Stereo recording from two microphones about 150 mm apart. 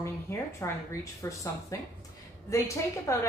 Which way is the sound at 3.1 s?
20° left (ahead or behind).